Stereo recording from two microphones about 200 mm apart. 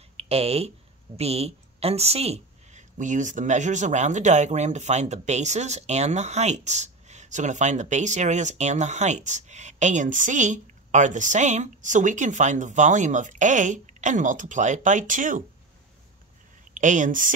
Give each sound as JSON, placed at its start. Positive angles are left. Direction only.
{"t": 0.2, "sound": "speech", "side_deg": -30}
{"t": 16.7, "sound": "speech", "side_deg": -40}